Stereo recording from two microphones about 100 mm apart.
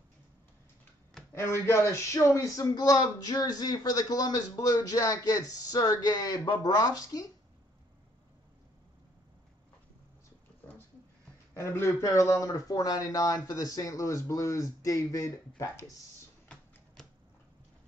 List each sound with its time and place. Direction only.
1.3 s speech: 25° left (ahead or behind)
11.5 s speech: 25° left (ahead or behind)